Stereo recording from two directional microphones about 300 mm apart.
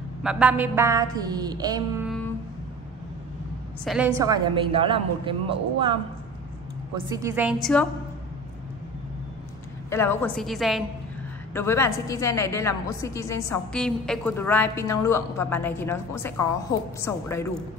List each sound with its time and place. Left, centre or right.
0.2 s a woman's voice: centre
2.0 s a sound: centre
3.8 s a woman's voice: centre
7.2 s a woman's voice: centre
9.8 s a woman's voice: centre